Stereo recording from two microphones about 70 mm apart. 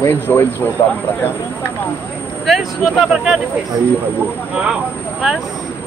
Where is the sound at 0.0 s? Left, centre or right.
Left.